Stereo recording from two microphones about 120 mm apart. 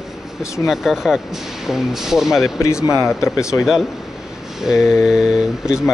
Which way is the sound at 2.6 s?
25° left (ahead or behind).